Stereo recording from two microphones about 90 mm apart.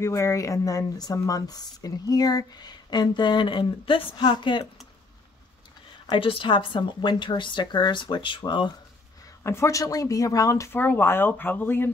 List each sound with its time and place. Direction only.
0.0 s speech: 35° left (ahead or behind); by 4.6 s 65° left (ahead or behind)
6.1 s speech: 75° left (ahead or behind); by 8.7 s 60° left (ahead or behind)
9.4 s speech: 30° left (ahead or behind)
10.7 s speech: 20° left (ahead or behind)